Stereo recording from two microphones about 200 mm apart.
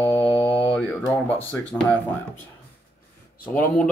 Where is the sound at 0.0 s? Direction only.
10° left (ahead or behind).